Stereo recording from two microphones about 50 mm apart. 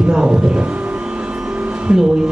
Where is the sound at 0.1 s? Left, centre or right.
Centre.